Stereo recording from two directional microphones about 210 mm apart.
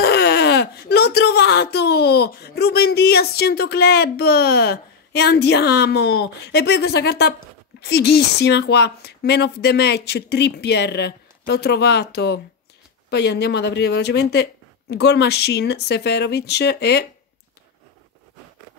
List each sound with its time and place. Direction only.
0.0 s speech: 50° left (ahead or behind)